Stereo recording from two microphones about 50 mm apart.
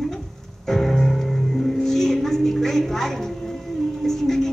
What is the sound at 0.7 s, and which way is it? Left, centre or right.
Music, centre.